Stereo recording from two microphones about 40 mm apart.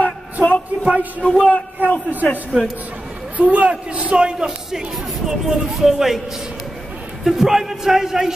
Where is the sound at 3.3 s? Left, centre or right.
Right.